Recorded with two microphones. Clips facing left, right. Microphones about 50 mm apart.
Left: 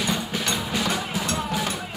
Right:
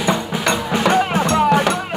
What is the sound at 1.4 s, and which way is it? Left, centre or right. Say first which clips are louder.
Music: right 12 dB; right.